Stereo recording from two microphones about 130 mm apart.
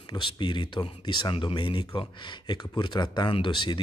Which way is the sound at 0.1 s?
35° left (ahead or behind).